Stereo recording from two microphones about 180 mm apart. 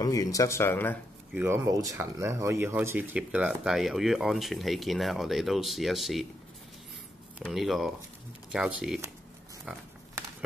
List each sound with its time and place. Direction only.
0.0 s speech: 20° left (ahead or behind)
1.3 s speech: 10° right (ahead or behind)
7.3 s speech: centre (ahead or behind)